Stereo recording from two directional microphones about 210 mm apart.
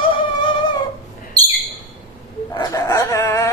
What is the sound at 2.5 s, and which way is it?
Dog, 15° left (ahead or behind).